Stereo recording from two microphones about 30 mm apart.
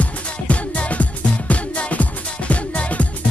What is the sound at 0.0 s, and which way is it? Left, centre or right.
Music, left.